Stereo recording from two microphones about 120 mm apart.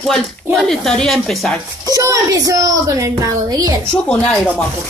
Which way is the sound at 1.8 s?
30° right (ahead or behind).